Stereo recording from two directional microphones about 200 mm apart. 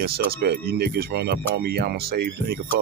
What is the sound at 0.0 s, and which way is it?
Speech, 50° right (ahead or behind).